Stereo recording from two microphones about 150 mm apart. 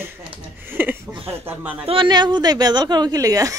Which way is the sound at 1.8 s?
35° right (ahead or behind).